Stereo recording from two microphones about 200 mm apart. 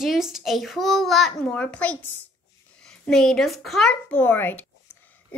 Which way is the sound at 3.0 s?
Centre (ahead or behind).